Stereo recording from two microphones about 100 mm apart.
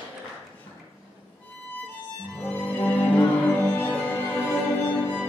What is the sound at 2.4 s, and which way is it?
Music, 20° left (ahead or behind).